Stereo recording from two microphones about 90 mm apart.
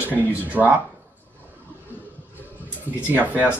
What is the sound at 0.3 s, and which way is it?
Speech, 20° right (ahead or behind).